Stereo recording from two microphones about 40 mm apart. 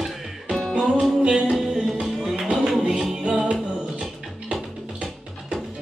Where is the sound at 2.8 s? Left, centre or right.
Centre.